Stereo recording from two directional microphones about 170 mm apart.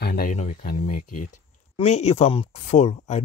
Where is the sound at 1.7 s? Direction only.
40° left (ahead or behind).